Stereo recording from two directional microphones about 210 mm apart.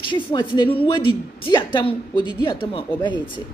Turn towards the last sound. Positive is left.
turn(degrees=20)  # may be behind; listen again after turning